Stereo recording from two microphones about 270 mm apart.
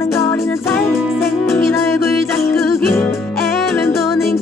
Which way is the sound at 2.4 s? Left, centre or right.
Left.